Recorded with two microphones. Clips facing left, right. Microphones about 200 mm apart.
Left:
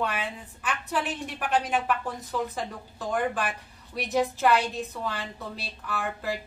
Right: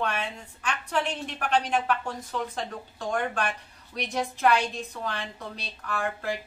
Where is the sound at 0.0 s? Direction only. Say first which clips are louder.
Even; 5° left (ahead or behind).